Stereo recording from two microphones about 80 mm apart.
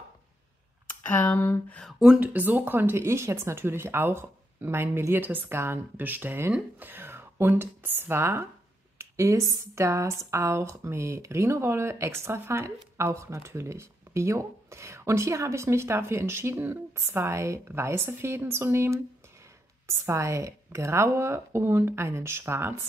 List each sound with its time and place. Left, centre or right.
0.8 s speech: left
2.1 s a woman's voice: centre